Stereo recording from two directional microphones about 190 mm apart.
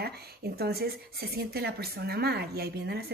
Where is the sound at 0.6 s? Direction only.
55° right (ahead or behind).